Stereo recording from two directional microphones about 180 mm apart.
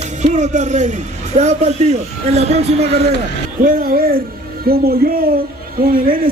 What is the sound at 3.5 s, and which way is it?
Speech, 55° right (ahead or behind).